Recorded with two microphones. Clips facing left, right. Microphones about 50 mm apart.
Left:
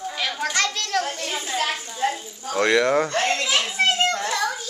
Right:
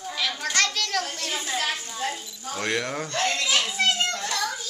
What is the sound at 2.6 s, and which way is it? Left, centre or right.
Speech, left.